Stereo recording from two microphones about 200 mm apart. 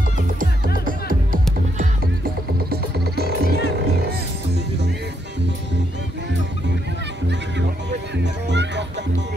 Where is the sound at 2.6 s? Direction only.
50° right (ahead or behind).